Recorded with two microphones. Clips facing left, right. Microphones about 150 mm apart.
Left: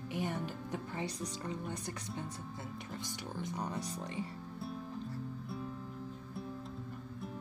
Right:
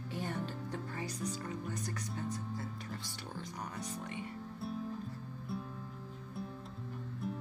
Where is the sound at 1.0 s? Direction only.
30° left (ahead or behind).